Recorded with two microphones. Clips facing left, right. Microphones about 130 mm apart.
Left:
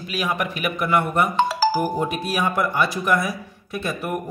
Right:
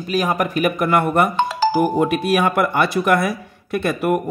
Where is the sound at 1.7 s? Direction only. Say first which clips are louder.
Right 6 dB; 70° right (ahead or behind).